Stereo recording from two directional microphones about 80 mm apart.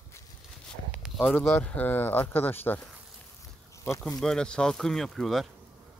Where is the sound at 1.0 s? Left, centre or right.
Centre.